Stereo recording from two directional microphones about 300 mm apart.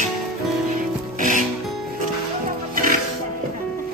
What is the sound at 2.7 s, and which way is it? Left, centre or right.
Music, right.